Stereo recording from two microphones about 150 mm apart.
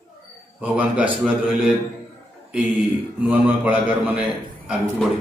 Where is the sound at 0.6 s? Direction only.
10° right (ahead or behind).